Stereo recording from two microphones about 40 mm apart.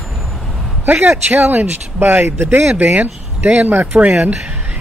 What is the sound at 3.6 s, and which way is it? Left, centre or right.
Speech, right.